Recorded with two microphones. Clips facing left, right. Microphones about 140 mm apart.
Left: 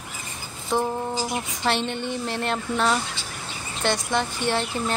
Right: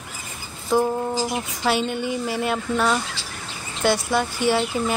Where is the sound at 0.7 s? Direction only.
5° right (ahead or behind).